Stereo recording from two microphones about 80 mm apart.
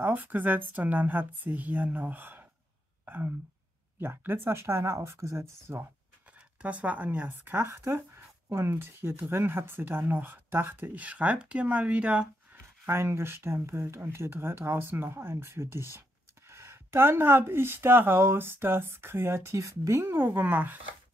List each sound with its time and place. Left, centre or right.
0.0 s speech: right
6.6 s speech: centre
12.8 s speech: right